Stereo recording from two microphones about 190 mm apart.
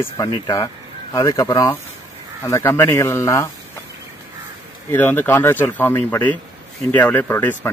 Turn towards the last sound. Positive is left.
turn(degrees=10)  # may be behind; listen again after turning